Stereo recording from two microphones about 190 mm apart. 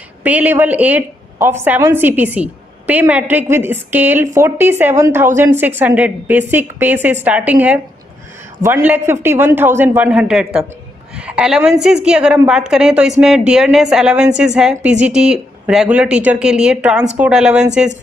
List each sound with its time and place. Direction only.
0.2 s a woman's voice: 10° right (ahead or behind)